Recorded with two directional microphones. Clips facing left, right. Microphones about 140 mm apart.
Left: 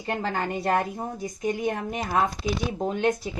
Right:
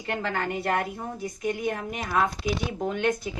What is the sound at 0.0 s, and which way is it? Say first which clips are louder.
A woman's voice: left 1 dB; 35° left (ahead or behind).